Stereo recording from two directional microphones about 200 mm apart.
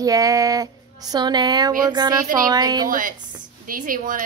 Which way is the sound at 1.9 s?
20° right (ahead or behind).